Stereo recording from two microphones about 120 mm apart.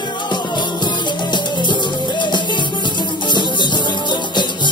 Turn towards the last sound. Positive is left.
turn(degrees=40)  # may be behind; listen again after turning